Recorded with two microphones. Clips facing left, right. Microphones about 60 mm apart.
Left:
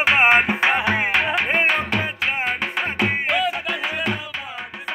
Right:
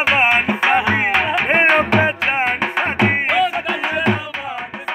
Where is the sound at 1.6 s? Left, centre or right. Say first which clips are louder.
Right 7 dB; right.